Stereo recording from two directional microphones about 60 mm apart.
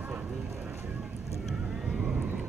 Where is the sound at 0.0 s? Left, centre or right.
Right.